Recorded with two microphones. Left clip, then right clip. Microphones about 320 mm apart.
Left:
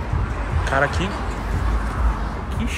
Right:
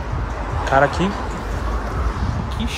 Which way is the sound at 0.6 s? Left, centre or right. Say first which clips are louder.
Right 4 dB; centre.